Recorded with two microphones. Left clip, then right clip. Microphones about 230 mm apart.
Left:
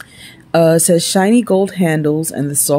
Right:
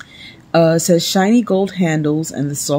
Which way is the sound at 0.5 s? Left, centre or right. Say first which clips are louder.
Left 2 dB; centre.